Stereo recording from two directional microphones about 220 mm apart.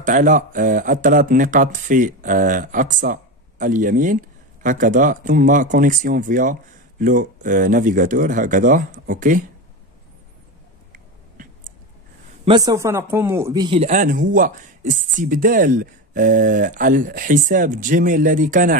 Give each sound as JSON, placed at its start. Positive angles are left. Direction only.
{"t": 0.0, "sound": "speech", "side_deg": -35}
{"t": 12.4, "sound": "speech", "side_deg": -20}